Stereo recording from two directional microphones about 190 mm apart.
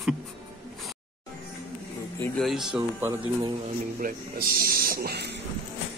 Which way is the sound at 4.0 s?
50° right (ahead or behind).